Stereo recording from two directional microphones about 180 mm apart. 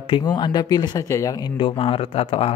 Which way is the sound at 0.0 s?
25° left (ahead or behind).